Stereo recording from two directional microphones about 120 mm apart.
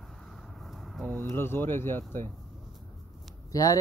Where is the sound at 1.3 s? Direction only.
20° left (ahead or behind).